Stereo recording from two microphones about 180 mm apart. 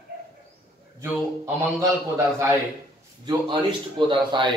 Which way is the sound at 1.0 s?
15° right (ahead or behind).